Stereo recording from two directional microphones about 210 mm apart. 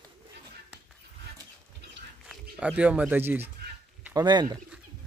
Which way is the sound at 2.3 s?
5° right (ahead or behind).